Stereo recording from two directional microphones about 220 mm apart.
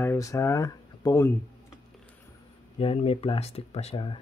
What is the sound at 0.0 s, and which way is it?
Speech, 10° left (ahead or behind).